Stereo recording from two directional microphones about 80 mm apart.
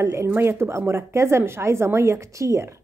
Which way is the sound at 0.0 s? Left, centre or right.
Right.